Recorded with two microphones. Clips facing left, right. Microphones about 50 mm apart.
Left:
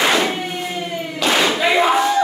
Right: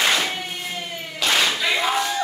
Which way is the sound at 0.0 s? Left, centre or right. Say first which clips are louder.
Left 5 dB; centre.